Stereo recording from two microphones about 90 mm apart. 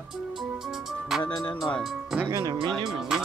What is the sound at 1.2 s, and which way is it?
Speech, 50° left (ahead or behind).